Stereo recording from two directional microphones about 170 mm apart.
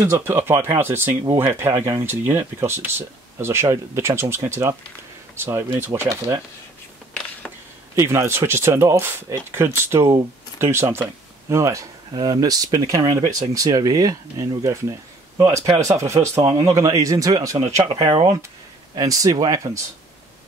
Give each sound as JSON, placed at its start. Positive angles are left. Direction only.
{"t": 0.0, "sound": "speech", "side_deg": -15}
{"t": 7.9, "sound": "speech", "side_deg": -15}